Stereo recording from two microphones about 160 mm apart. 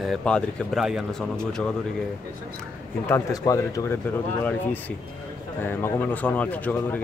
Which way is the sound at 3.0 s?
20° left (ahead or behind).